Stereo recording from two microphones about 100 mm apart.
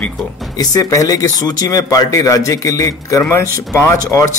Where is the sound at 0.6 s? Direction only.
35° left (ahead or behind).